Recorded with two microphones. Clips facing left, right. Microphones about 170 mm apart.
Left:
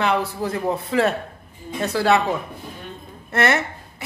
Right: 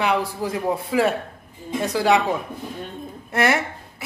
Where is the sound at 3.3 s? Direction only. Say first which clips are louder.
Even; 10° right (ahead or behind).